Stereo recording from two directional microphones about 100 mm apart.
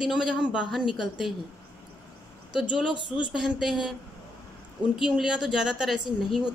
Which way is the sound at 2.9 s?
55° left (ahead or behind).